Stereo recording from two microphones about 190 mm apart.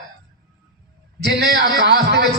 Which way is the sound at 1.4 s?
55° right (ahead or behind).